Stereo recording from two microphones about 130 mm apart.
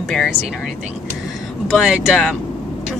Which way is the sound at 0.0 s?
5° left (ahead or behind).